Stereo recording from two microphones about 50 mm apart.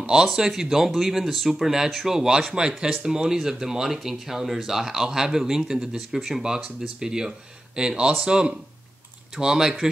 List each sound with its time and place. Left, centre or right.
0.0 s speech: centre